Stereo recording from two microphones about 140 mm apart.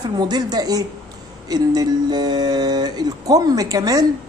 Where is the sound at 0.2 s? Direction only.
30° right (ahead or behind).